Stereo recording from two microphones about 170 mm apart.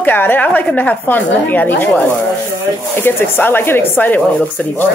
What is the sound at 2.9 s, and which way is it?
Speech, 15° left (ahead or behind).